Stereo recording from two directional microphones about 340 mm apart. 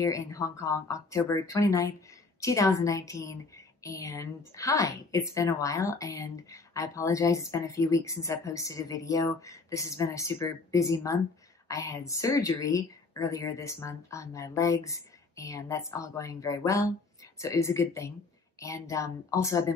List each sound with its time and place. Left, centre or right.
0.0 s a woman's voice: centre